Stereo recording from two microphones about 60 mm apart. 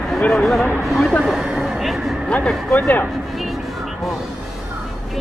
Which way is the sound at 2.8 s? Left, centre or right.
Left.